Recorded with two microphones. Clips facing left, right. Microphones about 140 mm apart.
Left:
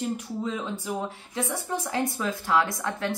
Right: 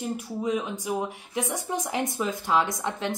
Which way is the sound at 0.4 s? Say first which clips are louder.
Right 3 dB; 15° right (ahead or behind).